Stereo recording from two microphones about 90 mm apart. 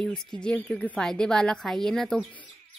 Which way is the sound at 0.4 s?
15° left (ahead or behind).